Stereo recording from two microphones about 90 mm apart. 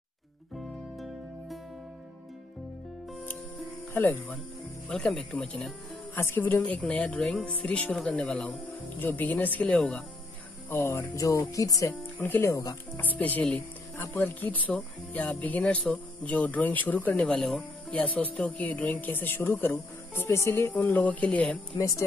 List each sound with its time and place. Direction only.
3.9 s speech: 20° left (ahead or behind)
4.8 s speech: 5° left (ahead or behind)
6.1 s speech: 25° left (ahead or behind)
10.7 s music: 30° left (ahead or behind)
11.9 s speech: 20° left (ahead or behind)
12.4 s music: 35° left (ahead or behind)
13.2 s speech: 15° left (ahead or behind)
17.9 s speech: 15° left (ahead or behind)
20.9 s speech: 15° left (ahead or behind)
21.7 s music: 40° left (ahead or behind)